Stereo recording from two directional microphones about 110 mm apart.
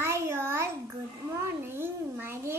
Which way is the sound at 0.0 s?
20° right (ahead or behind).